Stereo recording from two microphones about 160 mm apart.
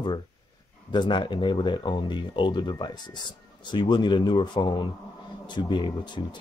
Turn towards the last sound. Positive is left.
turn(degrees=30)  # may be behind; listen again after turning